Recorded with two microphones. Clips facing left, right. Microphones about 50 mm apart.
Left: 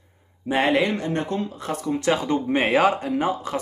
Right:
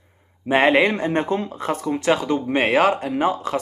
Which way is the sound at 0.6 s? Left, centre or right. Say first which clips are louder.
Right 4 dB; right.